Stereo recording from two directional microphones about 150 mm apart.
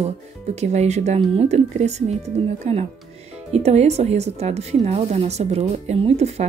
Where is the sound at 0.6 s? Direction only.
50° right (ahead or behind).